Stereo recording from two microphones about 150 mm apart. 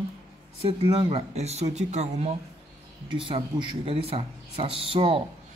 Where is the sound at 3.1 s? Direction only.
35° right (ahead or behind).